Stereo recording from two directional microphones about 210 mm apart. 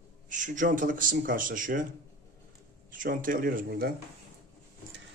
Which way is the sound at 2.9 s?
40° right (ahead or behind).